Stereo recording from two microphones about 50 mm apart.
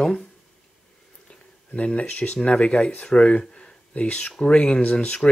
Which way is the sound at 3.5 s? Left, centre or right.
Left.